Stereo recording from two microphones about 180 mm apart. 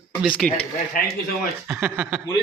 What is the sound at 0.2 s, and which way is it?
Speech, centre (ahead or behind).